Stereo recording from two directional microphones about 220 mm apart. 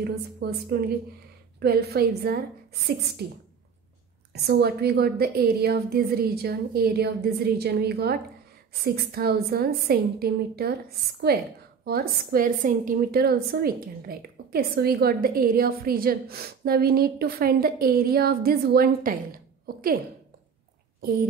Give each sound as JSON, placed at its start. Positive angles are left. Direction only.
{"t": 0.0, "sound": "a woman's voice", "side_deg": -45}
{"t": 4.3, "sound": "a woman's voice", "side_deg": -45}